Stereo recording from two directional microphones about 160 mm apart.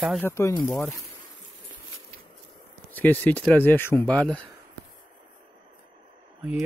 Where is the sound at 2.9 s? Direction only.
10° left (ahead or behind).